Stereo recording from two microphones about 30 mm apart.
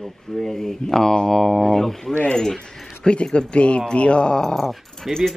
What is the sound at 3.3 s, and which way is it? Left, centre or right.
Speech, left.